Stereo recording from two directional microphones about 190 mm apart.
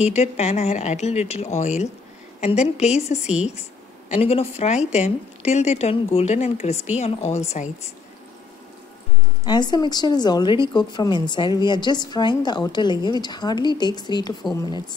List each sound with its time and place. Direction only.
0.0 s a woman's voice: 35° left (ahead or behind)
9.5 s speech: 20° left (ahead or behind)